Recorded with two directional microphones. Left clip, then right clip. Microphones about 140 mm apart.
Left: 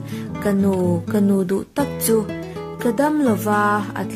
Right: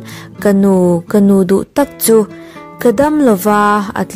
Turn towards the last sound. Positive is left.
turn(degrees=-65)  # may be behind; listen again after turning